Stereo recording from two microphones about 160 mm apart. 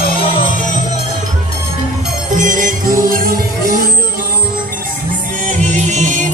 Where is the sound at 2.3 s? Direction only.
55° right (ahead or behind).